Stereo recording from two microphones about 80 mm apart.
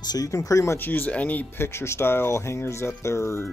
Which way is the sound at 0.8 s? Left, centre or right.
Left.